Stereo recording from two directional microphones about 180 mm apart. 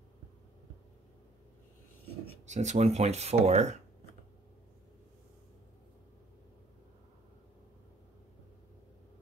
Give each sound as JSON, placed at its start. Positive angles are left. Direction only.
{"t": 2.4, "sound": "speech", "side_deg": -40}